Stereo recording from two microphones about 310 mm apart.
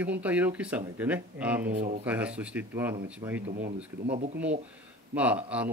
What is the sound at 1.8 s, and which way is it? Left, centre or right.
Speech, right.